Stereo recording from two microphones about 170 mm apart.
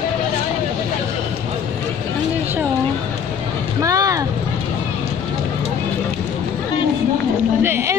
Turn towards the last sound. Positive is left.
turn(degrees=-15)  # may be behind; listen again after turning